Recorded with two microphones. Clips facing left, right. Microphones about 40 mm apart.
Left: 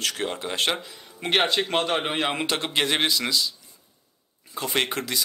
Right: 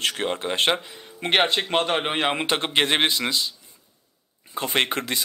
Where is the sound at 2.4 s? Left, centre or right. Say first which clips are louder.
Right 2 dB; right.